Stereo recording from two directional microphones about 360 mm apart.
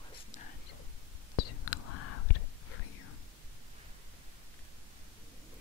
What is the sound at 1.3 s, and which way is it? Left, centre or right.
Whispering, left.